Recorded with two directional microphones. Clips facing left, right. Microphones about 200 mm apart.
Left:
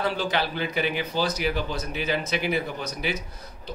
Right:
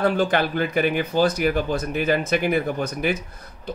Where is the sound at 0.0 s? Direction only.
50° right (ahead or behind).